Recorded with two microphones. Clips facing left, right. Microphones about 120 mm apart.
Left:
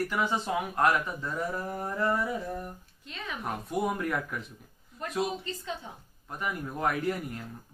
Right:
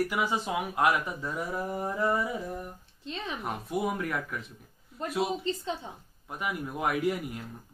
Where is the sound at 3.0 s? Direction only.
30° right (ahead or behind).